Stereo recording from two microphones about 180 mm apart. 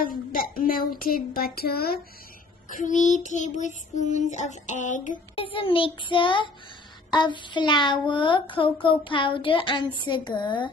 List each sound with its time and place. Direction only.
0.3 s a woman's voice: 50° left (ahead or behind)
2.7 s child singing: 45° left (ahead or behind)
5.1 s a woman's voice: 30° left (ahead or behind)